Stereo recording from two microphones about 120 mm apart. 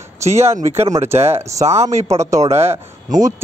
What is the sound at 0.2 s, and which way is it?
A man's voice, 20° right (ahead or behind).